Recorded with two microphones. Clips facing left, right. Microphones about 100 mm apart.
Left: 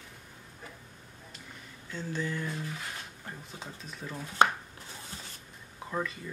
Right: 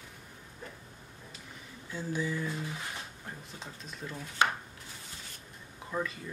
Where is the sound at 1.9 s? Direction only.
10° right (ahead or behind).